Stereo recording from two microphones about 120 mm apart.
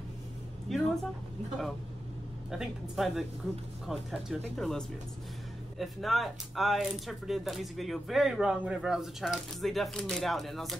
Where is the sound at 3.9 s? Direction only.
Centre (ahead or behind).